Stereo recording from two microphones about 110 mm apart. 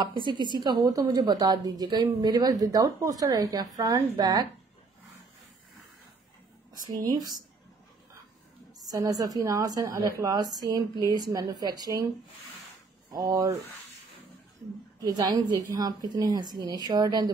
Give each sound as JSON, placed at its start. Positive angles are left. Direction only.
{"t": 0.0, "sound": "a woman's voice", "side_deg": -45}
{"t": 6.9, "sound": "a woman's voice", "side_deg": -35}
{"t": 8.8, "sound": "a woman's voice", "side_deg": -30}
{"t": 13.1, "sound": "a woman's voice", "side_deg": -40}
{"t": 15.0, "sound": "a woman's voice", "side_deg": -40}